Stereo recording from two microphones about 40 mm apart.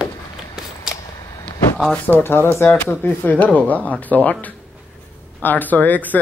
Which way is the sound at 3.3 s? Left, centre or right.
Left.